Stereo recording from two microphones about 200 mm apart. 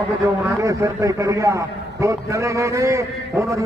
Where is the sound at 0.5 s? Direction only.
15° right (ahead or behind).